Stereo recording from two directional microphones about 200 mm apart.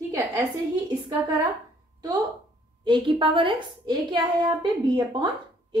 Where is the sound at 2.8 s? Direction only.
25° right (ahead or behind).